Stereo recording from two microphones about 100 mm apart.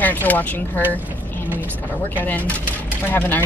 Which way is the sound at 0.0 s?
15° left (ahead or behind).